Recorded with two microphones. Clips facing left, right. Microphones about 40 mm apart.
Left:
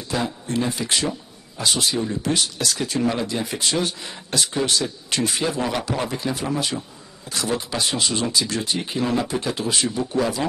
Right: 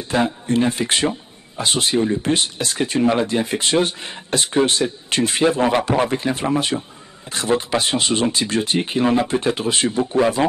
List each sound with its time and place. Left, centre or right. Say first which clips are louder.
0.1 s speech: right 6 dB; right